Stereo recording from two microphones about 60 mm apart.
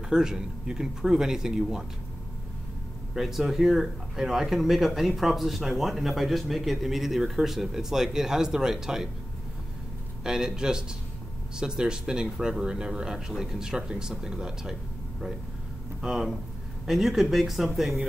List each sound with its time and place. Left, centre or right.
0.1 s speech: centre
3.2 s speech: centre
10.2 s speech: centre